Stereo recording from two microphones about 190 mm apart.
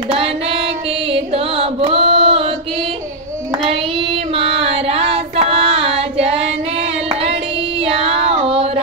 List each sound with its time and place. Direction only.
0.1 s female singing: 30° right (ahead or behind)
1.1 s carnatic music: 30° right (ahead or behind)
4.4 s child singing: 30° right (ahead or behind)
7.8 s a sound: 30° right (ahead or behind)